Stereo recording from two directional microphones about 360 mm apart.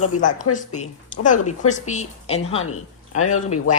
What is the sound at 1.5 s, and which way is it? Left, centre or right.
Speech, centre.